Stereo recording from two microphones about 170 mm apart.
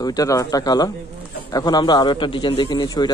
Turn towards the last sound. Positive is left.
turn(degrees=25)  # may be behind; listen again after turning